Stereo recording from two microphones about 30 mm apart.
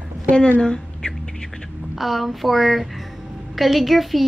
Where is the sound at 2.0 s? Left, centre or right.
Centre.